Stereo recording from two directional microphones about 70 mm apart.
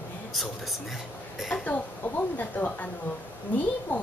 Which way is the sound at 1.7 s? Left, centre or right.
Left.